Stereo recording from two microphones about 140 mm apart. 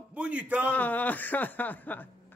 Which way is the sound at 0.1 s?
10° right (ahead or behind).